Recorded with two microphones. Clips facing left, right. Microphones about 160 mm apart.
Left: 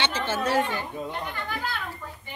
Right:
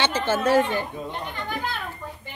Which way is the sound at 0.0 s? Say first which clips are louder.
Right 4 dB; 45° right (ahead or behind).